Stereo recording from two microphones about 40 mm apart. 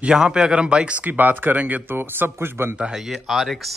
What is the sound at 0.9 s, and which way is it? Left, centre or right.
Speech, right.